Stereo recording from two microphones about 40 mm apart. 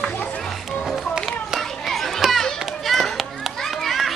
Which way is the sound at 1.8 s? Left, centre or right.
Centre.